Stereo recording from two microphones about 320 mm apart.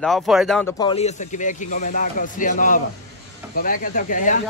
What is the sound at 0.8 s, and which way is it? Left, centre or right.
Speech, centre.